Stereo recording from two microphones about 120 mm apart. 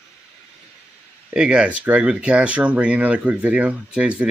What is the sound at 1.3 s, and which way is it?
Speech, 5° right (ahead or behind).